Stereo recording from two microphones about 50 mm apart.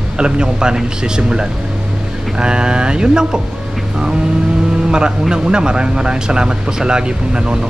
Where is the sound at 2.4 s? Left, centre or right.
Centre.